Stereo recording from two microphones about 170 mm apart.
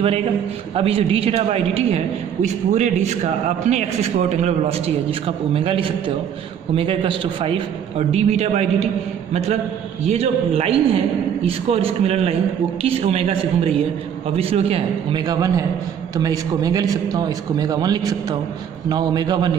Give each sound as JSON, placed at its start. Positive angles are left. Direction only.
{"t": 0.7, "sound": "a man's voice", "side_deg": -35}
{"t": 10.0, "sound": "a man's voice", "side_deg": -35}
{"t": 15.2, "sound": "a man's voice", "side_deg": -20}